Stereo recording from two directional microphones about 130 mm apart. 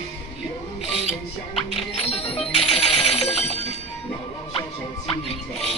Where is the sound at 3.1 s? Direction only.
55° left (ahead or behind).